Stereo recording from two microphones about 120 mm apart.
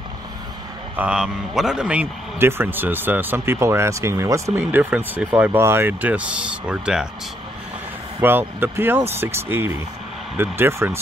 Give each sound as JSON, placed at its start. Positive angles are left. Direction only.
{"t": 0.9, "sound": "a man's voice", "side_deg": -10}
{"t": 8.2, "sound": "speech", "side_deg": -20}